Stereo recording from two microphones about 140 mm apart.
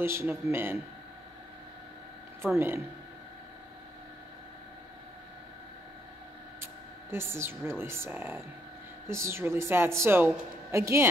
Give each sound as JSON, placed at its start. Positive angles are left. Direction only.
{"t": 0.0, "sound": "a woman's voice", "side_deg": -20}
{"t": 2.4, "sound": "speech", "side_deg": -5}
{"t": 6.6, "sound": "a sound", "side_deg": -15}
{"t": 7.8, "sound": "a woman's voice", "side_deg": -15}